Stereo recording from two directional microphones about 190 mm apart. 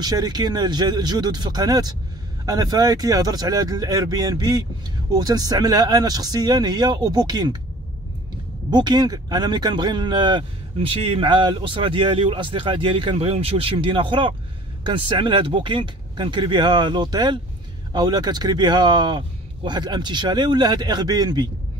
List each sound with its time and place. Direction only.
0.0 s speech: 20° right (ahead or behind)
8.6 s speech: 20° right (ahead or behind)